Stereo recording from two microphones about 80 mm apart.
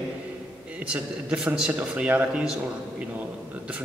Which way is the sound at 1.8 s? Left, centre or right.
Right.